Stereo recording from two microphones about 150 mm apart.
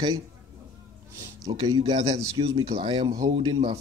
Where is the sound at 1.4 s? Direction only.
25° right (ahead or behind).